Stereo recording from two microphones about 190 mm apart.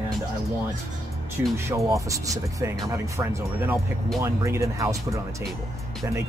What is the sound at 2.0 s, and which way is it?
Speech, 15° right (ahead or behind).